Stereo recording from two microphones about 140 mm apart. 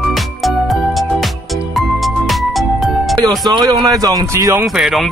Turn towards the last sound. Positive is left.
turn(degrees=0)  # may be behind; listen again after turning